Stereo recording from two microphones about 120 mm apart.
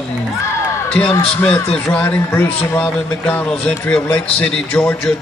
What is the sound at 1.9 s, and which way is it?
Music, 15° left (ahead or behind).